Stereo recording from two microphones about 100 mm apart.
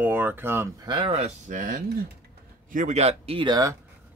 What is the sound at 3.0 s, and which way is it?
Speech, 80° right.